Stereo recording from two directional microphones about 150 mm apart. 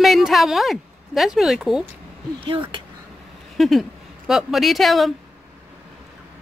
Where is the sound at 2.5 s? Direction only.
35° right (ahead or behind).